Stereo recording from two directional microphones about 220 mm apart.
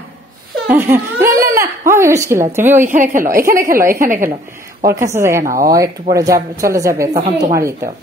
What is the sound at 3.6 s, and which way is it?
Speech, 10° right (ahead or behind).